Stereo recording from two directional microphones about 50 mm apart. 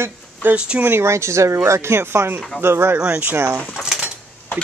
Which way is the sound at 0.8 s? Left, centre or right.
Right.